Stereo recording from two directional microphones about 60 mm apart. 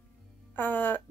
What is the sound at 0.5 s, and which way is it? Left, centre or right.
Music, left.